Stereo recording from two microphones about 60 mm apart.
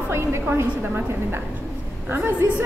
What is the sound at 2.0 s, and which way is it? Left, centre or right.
Speech, right.